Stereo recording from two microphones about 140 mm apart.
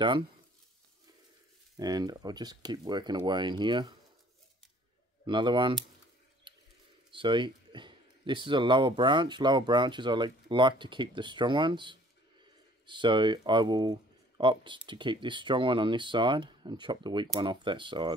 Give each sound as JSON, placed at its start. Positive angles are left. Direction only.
{"t": 1.8, "sound": "speech", "side_deg": -25}
{"t": 5.2, "sound": "speech", "side_deg": -35}
{"t": 6.5, "sound": "a sound", "side_deg": -35}
{"t": 7.1, "sound": "speech", "side_deg": -35}